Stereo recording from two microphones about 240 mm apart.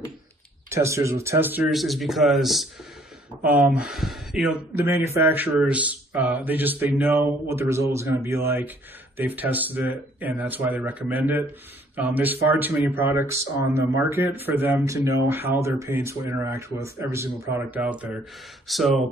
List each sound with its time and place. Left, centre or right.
0.7 s speech: centre